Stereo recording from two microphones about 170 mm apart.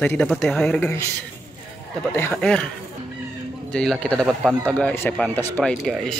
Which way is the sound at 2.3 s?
5° left (ahead or behind).